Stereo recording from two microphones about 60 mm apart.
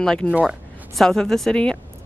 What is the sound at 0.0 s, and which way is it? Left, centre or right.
Speech, centre.